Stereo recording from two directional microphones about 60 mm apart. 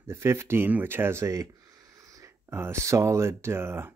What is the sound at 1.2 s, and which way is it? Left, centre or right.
Speech, right.